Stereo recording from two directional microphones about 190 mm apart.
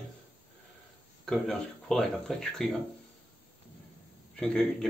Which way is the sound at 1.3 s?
Centre (ahead or behind).